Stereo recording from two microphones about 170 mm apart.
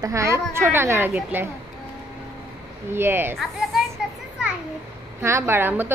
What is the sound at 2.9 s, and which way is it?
Speech, 15° right (ahead or behind).